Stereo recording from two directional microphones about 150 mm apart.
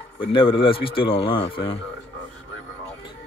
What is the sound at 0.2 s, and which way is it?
A man's voice, 35° left (ahead or behind).